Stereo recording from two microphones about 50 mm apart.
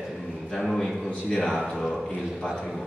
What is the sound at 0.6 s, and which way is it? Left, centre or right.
A man's voice, centre.